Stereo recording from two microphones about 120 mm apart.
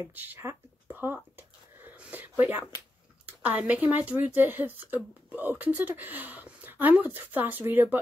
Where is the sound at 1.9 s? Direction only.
15° right (ahead or behind).